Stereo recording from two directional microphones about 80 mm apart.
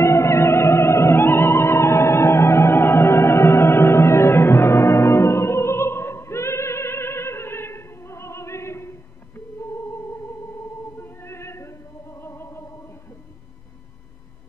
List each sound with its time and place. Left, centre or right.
0.0 s music: left
11.0 s music: left